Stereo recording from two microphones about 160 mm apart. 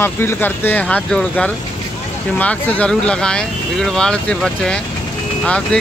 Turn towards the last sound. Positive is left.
turn(degrees=5)  # may be behind; listen again after turning